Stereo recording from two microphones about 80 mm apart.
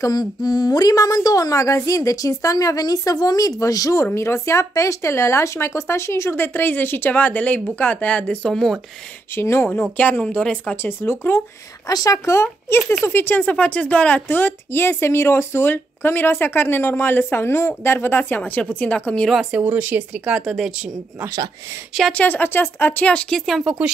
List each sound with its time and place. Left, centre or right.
0.0 s a woman's voice: left; by 8.7 s centre
9.3 s speech: left
10.2 s a woman's voice: centre
10.8 s speech: left
11.9 s speech: left; by 19.3 s centre
19.6 s speech: right
20.3 s speech: centre
22.1 s speech: left
23.0 s a woman's voice: centre
23.4 s speech: centre